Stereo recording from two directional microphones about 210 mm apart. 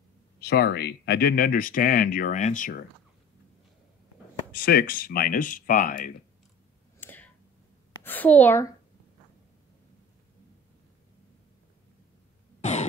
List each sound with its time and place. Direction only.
0.4 s speech: 50° left (ahead or behind)
4.5 s speech: 45° left (ahead or behind)
7.0 s a sound: 10° left (ahead or behind)
8.0 s a woman's voice: 10° left (ahead or behind)
12.6 s cough: 35° left (ahead or behind)